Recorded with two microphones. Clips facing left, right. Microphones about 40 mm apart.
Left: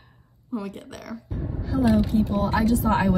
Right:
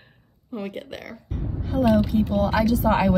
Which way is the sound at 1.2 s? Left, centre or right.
Right.